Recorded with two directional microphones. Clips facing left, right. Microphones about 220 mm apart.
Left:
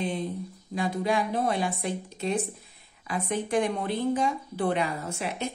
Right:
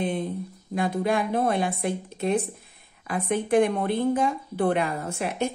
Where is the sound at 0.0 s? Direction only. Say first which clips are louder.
Right 3 dB; 55° right (ahead or behind).